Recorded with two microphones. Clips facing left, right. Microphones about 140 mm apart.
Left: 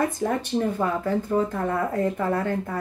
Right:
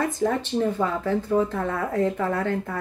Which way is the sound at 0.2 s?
5° left (ahead or behind).